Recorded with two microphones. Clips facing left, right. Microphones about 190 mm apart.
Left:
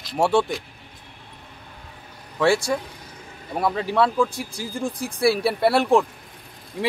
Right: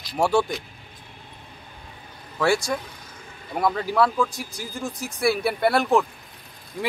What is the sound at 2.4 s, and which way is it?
Speech, 30° left (ahead or behind).